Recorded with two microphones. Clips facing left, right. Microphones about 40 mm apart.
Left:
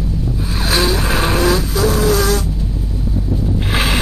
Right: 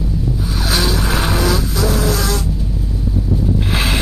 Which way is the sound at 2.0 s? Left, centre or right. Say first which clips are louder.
Left 4 dB; left.